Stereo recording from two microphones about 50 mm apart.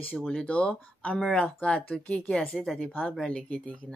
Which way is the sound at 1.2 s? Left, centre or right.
Centre.